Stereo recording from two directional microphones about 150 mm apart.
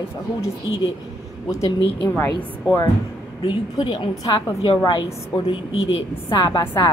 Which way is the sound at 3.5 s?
30° left (ahead or behind).